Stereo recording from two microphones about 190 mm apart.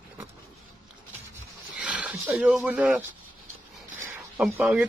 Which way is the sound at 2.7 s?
10° right (ahead or behind).